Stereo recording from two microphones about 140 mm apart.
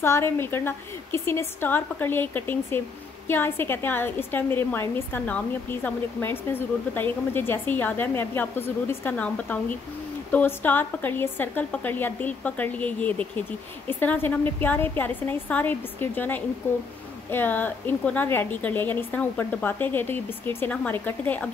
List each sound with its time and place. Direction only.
0.0 s a woman's voice: 20° left (ahead or behind)